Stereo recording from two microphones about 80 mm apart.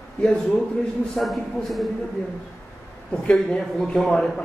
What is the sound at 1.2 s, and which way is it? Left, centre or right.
Speech, centre.